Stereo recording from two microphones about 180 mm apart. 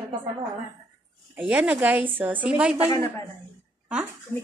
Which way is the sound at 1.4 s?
10° right (ahead or behind).